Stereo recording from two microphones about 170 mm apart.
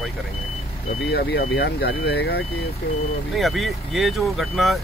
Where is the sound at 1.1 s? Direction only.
75° left (ahead or behind).